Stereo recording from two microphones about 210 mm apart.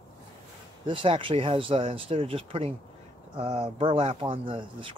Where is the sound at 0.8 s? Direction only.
25° right (ahead or behind).